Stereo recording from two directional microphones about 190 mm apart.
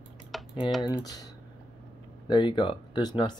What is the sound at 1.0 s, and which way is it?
Speech, 20° left (ahead or behind).